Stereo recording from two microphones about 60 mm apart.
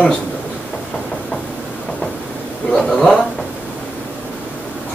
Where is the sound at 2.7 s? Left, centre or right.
Centre.